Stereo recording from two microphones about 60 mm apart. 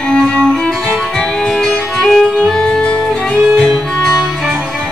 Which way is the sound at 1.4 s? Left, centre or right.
Centre.